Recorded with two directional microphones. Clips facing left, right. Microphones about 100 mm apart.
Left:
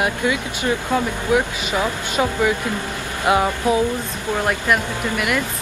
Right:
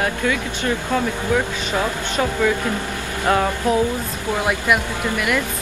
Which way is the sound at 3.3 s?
10° left (ahead or behind).